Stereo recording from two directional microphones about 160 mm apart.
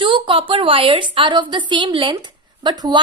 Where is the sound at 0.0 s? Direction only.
30° right (ahead or behind).